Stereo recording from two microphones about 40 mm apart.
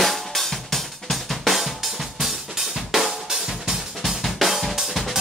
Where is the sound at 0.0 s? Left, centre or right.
Centre.